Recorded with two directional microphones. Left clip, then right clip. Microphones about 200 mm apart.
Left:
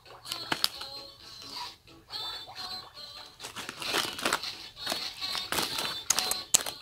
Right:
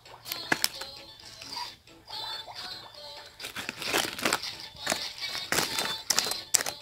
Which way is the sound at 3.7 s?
20° right (ahead or behind).